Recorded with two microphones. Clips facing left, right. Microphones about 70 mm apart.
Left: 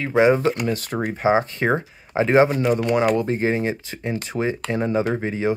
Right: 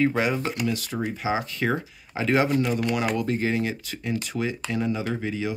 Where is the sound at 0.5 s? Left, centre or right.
Left.